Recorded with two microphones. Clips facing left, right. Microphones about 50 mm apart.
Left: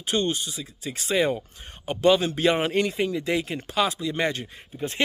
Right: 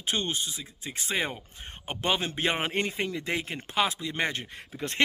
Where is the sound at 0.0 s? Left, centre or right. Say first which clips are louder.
Left 5 dB; right.